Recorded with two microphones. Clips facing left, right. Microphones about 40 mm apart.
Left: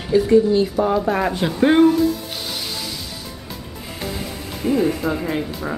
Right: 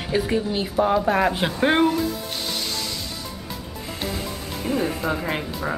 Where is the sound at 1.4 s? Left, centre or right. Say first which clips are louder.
Left 4 dB; centre.